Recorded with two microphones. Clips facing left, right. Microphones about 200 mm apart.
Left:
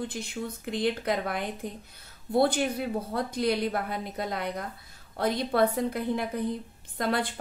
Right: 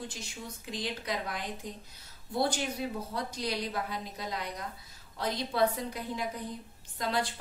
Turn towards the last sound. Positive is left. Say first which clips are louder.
# left 4 dB
turn(degrees=55)  # may be behind; listen again after turning